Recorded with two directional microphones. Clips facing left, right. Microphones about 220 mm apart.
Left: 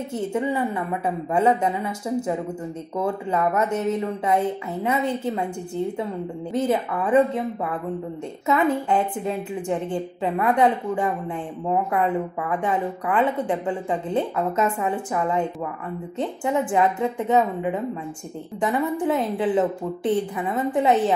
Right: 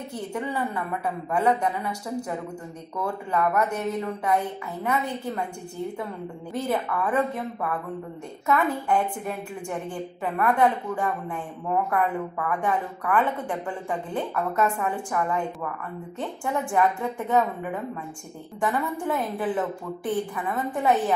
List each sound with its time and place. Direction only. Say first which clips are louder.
0.1 s a woman's voice: left 6 dB; 20° left (ahead or behind)
6.5 s a woman's voice: left 4 dB; 20° left (ahead or behind)
8.5 s a woman's voice: left 3 dB; 20° left (ahead or behind)